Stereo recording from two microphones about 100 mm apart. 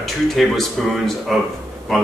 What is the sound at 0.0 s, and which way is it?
A man's voice, centre (ahead or behind).